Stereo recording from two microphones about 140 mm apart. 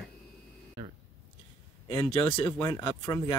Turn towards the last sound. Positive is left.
turn(degrees=25)  # may be behind; listen again after turning